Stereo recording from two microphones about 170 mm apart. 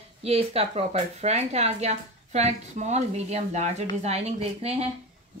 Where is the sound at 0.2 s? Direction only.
35° right (ahead or behind).